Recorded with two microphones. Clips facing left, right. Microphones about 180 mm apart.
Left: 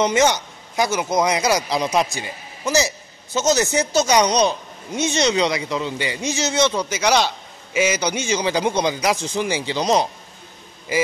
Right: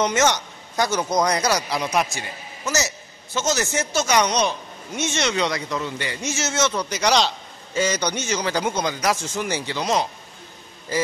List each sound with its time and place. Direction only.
0.0 s speech: 10° left (ahead or behind)
1.7 s speech: 30° left (ahead or behind)
2.1 s a man's voice: 15° left (ahead or behind)
4.3 s a man's voice: 35° left (ahead or behind)
4.9 s a man's voice: 15° left (ahead or behind)
9.8 s a man's voice: 30° left (ahead or behind)